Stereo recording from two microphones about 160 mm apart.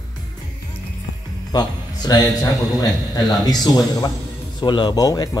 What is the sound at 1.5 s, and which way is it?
A man's voice, 25° left (ahead or behind).